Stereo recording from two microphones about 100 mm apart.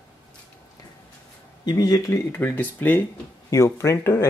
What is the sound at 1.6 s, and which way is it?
Speech, 40° left (ahead or behind).